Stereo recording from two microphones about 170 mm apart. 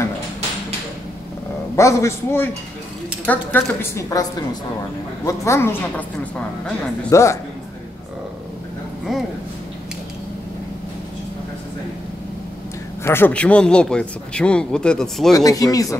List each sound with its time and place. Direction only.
1.8 s a woman's voice: 15° left (ahead or behind)
7.1 s a woman's voice: 15° left (ahead or behind)
9.1 s a man's voice: centre (ahead or behind)
13.0 s a man's voice: 15° left (ahead or behind)
15.3 s speech: 20° left (ahead or behind)